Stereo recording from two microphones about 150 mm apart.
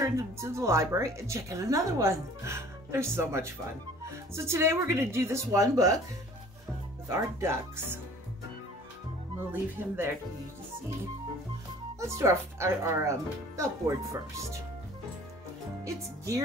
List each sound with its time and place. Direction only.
0.0 s a woman's voice: 20° right (ahead or behind)
7.1 s speech: 20° right (ahead or behind)
9.5 s speech: 15° right (ahead or behind)
12.1 s a woman's voice: 20° right (ahead or behind)
15.8 s a woman's voice: 20° right (ahead or behind)